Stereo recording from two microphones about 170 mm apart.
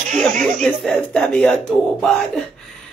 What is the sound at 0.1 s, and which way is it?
Speech, centre (ahead or behind).